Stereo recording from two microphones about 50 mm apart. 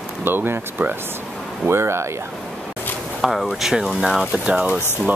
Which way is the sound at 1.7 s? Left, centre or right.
Right.